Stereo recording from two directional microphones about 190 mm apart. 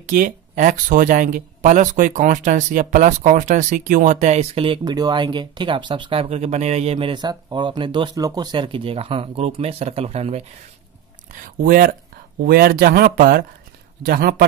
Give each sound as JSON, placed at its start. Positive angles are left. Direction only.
{"t": 0.1, "sound": "speech", "side_deg": -45}
{"t": 11.4, "sound": "speech", "side_deg": -50}